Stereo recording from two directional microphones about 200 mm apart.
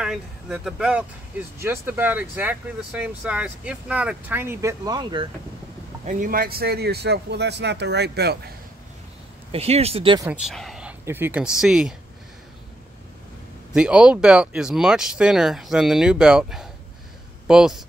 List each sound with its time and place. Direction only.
0.0 s speech: 5° right (ahead or behind); by 5.2 s 20° right (ahead or behind)
6.0 s speech: 40° right (ahead or behind)
9.5 s speech: 30° right (ahead or behind)
10.2 s speech: 5° right (ahead or behind)
13.7 s speech: 5° right (ahead or behind)